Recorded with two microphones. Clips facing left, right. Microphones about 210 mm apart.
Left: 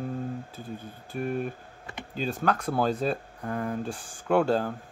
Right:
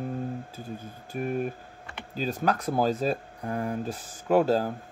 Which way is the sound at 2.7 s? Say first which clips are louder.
Right 1 dB; 10° right (ahead or behind).